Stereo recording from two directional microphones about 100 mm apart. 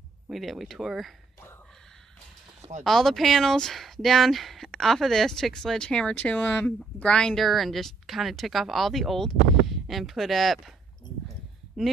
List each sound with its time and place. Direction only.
0.3 s speech: centre (ahead or behind)
2.8 s speech: centre (ahead or behind)
11.8 s speech: 5° right (ahead or behind)